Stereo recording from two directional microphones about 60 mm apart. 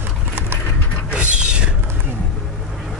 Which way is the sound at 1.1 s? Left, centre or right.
Centre.